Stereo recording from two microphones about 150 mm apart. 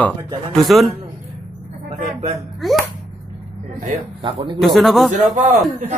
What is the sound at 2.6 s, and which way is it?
Music, centre (ahead or behind).